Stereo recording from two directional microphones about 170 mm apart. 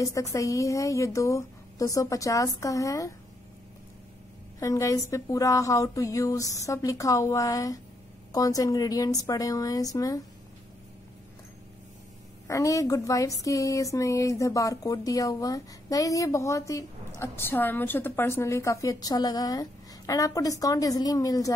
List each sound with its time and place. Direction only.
0.0 s speech: 20° left (ahead or behind)
4.6 s speech: 20° left (ahead or behind)
12.4 s speech: 20° left (ahead or behind)